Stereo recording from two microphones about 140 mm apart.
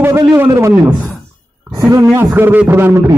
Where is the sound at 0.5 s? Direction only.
25° right (ahead or behind).